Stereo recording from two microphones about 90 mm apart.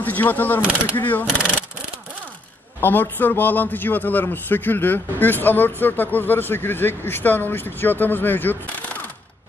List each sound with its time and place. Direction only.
0.0 s a man's voice: 20° left (ahead or behind)
2.8 s a man's voice: 20° left (ahead or behind)